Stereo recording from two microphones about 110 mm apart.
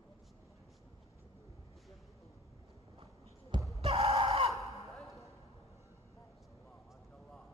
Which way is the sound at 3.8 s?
60° right (ahead or behind).